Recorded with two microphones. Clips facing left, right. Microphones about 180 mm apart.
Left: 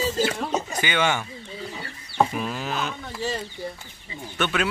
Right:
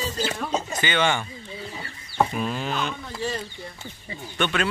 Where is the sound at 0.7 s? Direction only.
10° left (ahead or behind).